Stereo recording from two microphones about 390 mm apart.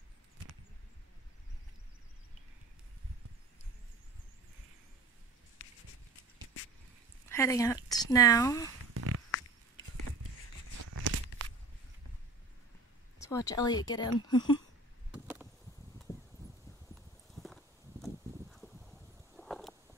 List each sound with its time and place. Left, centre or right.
7.2 s speech: centre
8.9 s a sound: right
10.8 s tearing: right
13.2 s speech: centre
15.0 s vehicle: centre
16.9 s clip-clop: centre